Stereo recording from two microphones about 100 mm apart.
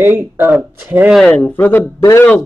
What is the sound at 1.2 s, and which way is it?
Speech, 15° left (ahead or behind).